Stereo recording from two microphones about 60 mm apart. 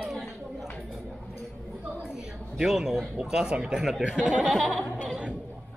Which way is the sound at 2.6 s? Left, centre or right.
Centre.